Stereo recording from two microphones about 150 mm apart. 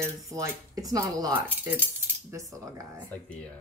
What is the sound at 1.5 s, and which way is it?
Speech, 10° right (ahead or behind).